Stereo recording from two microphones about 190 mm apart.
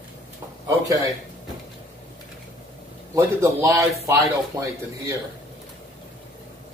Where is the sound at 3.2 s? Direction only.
15° right (ahead or behind).